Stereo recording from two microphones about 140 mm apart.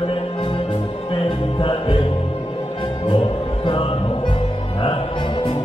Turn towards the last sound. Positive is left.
turn(degrees=40)  # may be behind; listen again after turning